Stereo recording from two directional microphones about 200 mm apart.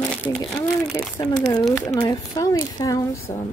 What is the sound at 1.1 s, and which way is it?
A woman's voice, 20° left (ahead or behind).